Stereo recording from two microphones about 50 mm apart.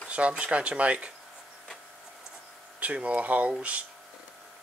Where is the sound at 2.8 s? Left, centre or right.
Right.